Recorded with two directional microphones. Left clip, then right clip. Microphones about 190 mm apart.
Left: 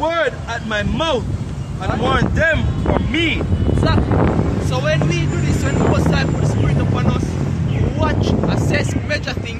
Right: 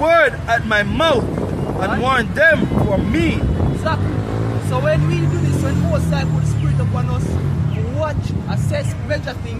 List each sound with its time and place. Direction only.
0.0 s vehicle: 20° right (ahead or behind)
2.0 s speech: 20° right (ahead or behind)
8.0 s speech: 5° left (ahead or behind)